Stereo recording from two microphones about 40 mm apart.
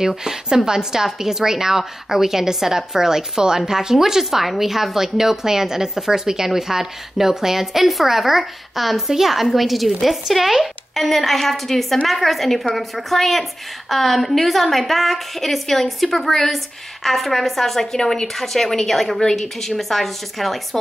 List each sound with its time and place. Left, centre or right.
0.2 s a woman's voice: centre